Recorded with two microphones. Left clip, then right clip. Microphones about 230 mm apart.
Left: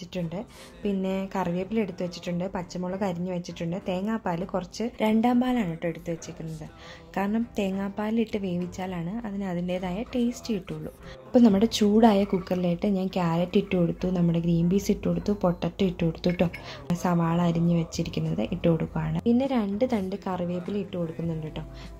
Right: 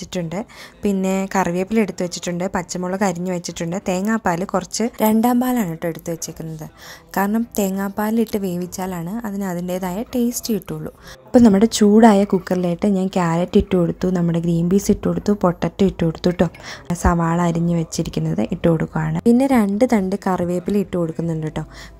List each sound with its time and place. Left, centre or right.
0.1 s a woman's voice: right
19.2 s a woman's voice: right